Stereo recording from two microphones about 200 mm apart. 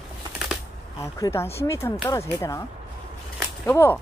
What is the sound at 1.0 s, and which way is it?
Speech, 15° left (ahead or behind).